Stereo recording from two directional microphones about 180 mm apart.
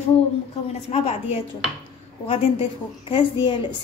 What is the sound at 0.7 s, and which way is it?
A woman's voice, 35° left (ahead or behind).